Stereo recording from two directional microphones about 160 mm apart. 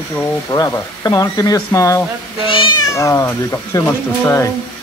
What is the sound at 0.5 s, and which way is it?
Speech, 20° left (ahead or behind).